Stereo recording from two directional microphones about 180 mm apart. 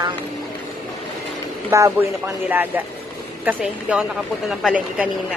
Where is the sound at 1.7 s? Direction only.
15° right (ahead or behind).